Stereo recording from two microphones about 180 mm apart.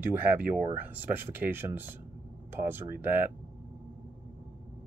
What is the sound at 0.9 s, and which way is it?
Speech, 10° right (ahead or behind).